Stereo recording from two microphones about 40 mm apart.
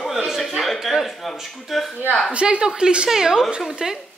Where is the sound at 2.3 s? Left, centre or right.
Right.